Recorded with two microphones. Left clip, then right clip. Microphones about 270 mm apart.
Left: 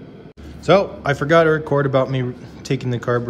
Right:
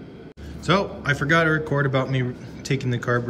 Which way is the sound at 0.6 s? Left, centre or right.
Centre.